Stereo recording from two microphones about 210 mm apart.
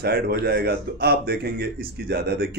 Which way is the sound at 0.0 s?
50° right (ahead or behind).